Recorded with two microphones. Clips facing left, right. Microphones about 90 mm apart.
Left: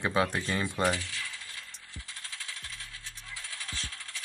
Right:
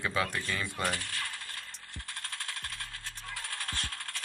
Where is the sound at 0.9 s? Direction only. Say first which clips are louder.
Even; 55° right (ahead or behind).